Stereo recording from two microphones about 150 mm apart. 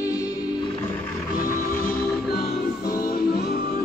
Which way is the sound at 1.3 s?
65° left (ahead or behind).